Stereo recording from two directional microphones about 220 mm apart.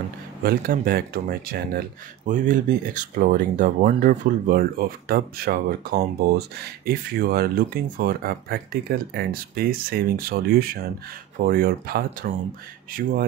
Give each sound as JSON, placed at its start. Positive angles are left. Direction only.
{"t": 0.4, "sound": "speech", "side_deg": -40}